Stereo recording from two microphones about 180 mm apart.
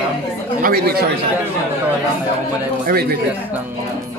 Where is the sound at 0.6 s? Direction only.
60° right (ahead or behind).